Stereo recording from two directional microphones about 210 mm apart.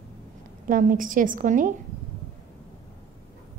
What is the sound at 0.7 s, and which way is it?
A woman's voice, 40° right (ahead or behind).